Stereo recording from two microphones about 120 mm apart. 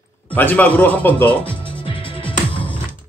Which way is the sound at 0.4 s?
15° left (ahead or behind).